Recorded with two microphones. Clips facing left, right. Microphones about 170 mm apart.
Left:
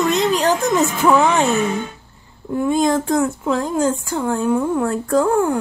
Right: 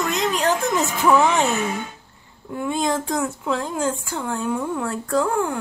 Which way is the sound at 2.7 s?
45° left (ahead or behind).